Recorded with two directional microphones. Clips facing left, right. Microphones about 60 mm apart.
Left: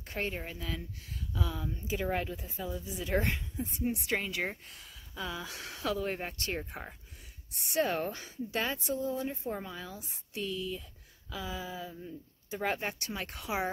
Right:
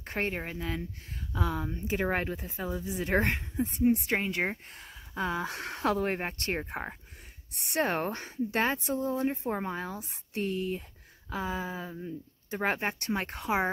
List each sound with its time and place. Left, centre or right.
0.0 s speech: right
1.3 s speech: right
3.9 s speech: right
7.5 s speech: right